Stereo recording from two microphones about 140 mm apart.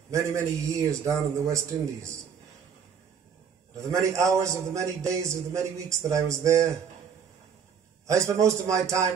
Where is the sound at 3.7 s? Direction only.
20° right (ahead or behind).